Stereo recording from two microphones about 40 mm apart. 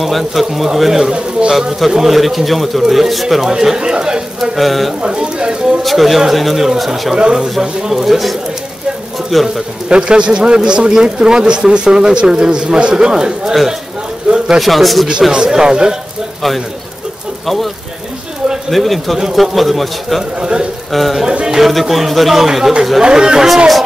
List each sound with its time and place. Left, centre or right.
0.0 s speech: centre
4.4 s speech: centre
5.0 s a sound: right
5.8 s speech: centre
9.8 s a man's voice: right
13.5 s speech: centre
14.3 s a sound: centre
14.6 s speech: centre
15.3 s a man's voice: centre
18.7 s speech: centre
20.3 s a man's voice: right
20.9 s speech: centre
21.3 s bird: right
21.5 s speech: centre